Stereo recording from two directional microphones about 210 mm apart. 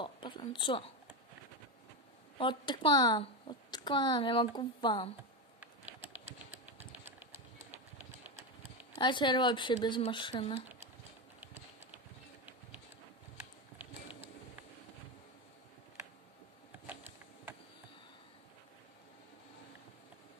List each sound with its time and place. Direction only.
0.0 s speech: 20° left (ahead or behind)
2.3 s speech: 25° left (ahead or behind)
8.9 s speech: 20° left (ahead or behind)